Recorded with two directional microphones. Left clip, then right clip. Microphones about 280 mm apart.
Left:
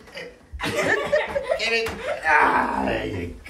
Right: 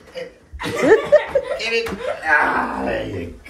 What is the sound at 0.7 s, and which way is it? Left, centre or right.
Chuckle, centre.